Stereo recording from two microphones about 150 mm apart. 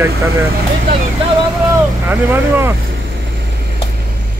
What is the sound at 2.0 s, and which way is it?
Speech, 15° right (ahead or behind).